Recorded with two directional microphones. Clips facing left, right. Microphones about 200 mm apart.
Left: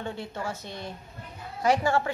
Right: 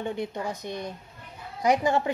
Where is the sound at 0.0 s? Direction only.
15° right (ahead or behind).